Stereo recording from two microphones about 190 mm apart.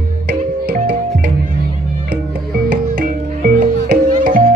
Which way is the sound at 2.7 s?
50° right (ahead or behind).